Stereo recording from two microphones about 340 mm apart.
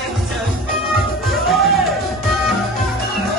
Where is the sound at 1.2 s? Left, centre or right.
Centre.